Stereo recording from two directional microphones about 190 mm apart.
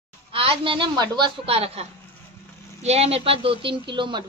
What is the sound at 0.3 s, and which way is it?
A woman's voice, 30° right (ahead or behind).